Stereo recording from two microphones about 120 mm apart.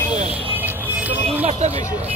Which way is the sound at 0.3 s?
15° right (ahead or behind).